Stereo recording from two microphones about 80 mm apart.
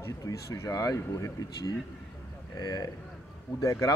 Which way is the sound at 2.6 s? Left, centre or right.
Left.